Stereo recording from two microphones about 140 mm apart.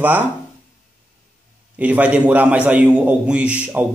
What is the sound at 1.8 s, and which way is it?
A man's voice, 10° right (ahead or behind).